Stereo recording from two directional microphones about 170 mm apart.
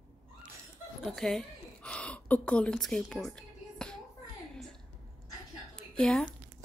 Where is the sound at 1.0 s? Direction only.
Centre (ahead or behind).